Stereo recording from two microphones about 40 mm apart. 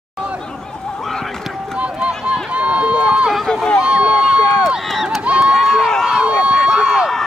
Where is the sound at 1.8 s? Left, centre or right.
Right.